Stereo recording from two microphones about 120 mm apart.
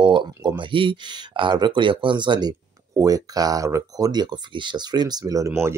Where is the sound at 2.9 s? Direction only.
30° right (ahead or behind).